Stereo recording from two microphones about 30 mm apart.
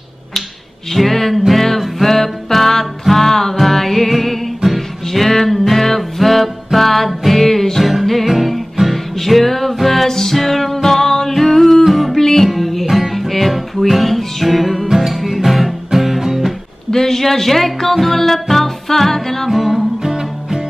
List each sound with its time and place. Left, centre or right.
0.9 s music: centre
7.8 s music: centre
10.0 s music: centre
10.3 s music: centre
16.9 s music: centre
19.5 s music: centre
20.0 s music: centre